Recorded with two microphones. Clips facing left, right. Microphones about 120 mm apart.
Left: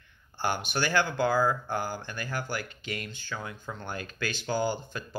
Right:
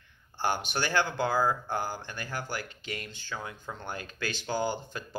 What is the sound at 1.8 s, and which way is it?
Speech, 25° right (ahead or behind).